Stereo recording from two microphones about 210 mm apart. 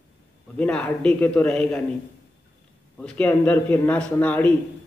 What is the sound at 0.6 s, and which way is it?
A man's voice, 5° left (ahead or behind).